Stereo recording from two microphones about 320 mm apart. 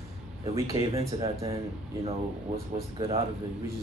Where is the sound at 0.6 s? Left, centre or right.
Centre.